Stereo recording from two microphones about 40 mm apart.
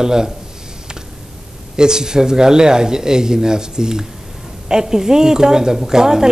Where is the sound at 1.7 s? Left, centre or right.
Centre.